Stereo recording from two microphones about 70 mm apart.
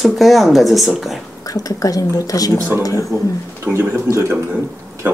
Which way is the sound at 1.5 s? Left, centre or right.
Left.